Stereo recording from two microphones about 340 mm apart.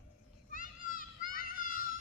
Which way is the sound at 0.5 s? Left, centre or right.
Left.